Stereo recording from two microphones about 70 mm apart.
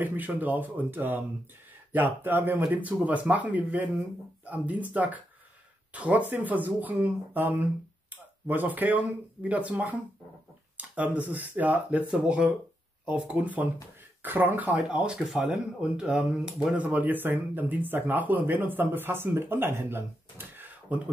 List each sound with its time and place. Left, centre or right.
0.0 s speech: right; by 16.7 s centre
16.7 s speech: right